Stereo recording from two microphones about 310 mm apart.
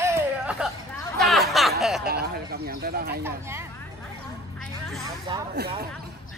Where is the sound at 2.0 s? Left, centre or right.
Right.